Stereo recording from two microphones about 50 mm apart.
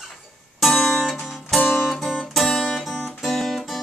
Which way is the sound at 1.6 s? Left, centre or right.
Left.